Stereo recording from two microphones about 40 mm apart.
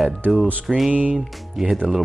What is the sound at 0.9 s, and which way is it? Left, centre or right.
Speech, right.